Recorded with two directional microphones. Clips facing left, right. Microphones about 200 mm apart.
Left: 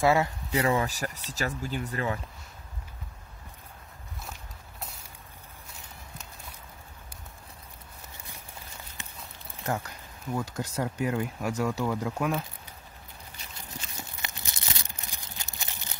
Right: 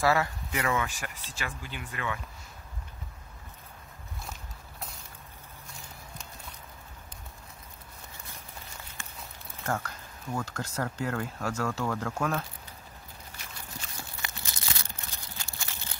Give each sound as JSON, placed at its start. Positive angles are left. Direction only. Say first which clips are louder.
{"t": 0.0, "sound": "speech", "louder": "left 3 dB", "side_deg": 20}
{"t": 0.5, "sound": "speech", "louder": "left 4 dB", "side_deg": 35}
{"t": 9.6, "sound": "speech", "louder": "left 1 dB", "side_deg": 15}
{"t": 13.7, "sound": "a sound", "louder": "left 2 dB", "side_deg": 20}